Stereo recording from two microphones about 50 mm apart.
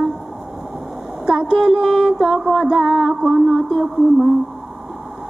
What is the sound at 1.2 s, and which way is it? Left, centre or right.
Mantra, centre.